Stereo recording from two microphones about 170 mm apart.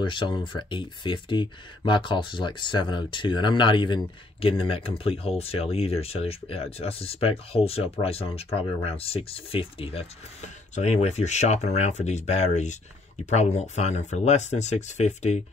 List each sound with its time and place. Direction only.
0.0 s speech: 30° left (ahead or behind)